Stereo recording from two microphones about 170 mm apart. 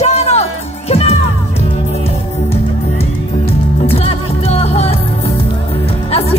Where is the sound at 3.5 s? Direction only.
35° left (ahead or behind).